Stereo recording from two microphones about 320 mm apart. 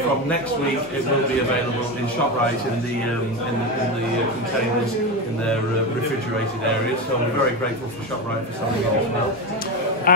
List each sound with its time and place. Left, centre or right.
10.1 s a man's voice: left